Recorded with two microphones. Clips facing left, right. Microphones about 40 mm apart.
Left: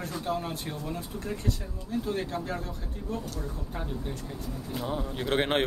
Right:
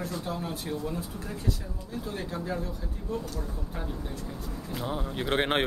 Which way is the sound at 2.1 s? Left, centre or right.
Centre.